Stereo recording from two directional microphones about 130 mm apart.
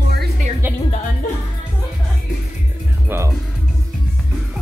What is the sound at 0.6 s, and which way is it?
Music, 15° right (ahead or behind).